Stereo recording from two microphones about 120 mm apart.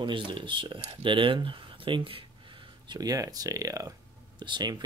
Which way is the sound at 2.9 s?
30° right (ahead or behind).